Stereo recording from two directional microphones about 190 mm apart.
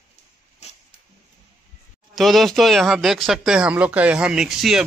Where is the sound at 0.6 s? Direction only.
35° left (ahead or behind).